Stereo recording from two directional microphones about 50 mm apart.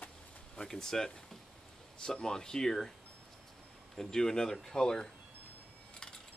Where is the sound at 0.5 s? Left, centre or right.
Centre.